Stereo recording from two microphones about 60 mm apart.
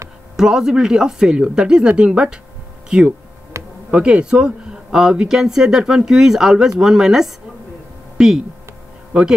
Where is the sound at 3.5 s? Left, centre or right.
Right.